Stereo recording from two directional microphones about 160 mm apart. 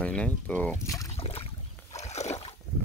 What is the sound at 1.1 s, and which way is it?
Boat, 40° left (ahead or behind).